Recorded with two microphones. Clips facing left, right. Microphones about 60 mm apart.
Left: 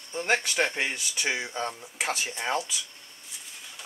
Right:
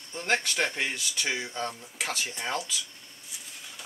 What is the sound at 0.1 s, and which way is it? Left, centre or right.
Speech, centre.